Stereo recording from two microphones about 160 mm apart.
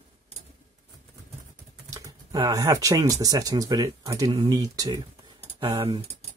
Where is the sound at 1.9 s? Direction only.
20° right (ahead or behind).